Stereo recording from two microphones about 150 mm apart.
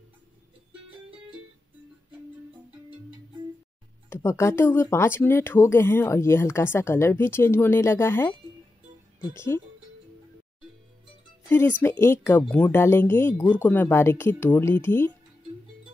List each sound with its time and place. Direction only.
4.1 s speech: 20° left (ahead or behind)
11.4 s speech: 15° left (ahead or behind)